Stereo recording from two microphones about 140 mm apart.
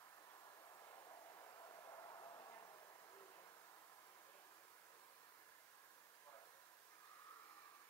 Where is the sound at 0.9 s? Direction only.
25° left (ahead or behind).